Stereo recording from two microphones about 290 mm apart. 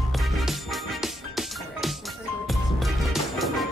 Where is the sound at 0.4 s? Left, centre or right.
Centre.